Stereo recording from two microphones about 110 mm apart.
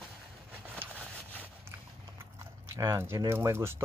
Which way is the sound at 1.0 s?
15° left (ahead or behind).